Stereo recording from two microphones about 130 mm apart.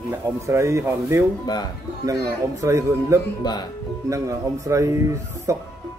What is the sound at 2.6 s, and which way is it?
Speech, 25° right (ahead or behind).